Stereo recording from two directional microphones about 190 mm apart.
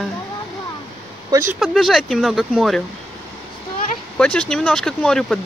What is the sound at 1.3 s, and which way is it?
Speech, 15° right (ahead or behind).